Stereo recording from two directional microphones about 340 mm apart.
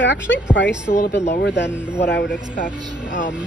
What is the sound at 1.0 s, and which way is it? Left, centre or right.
Speech, left.